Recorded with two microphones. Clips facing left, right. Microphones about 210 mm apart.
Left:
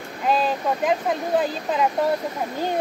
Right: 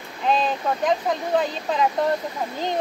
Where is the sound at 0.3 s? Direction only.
5° left (ahead or behind).